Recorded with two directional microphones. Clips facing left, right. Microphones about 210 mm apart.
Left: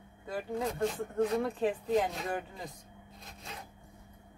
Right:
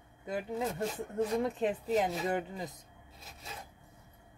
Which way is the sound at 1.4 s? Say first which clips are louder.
Left 1 dB; 20° right (ahead or behind).